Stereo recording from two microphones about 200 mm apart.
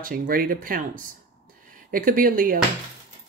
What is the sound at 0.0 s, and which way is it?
Speech, 45° right (ahead or behind).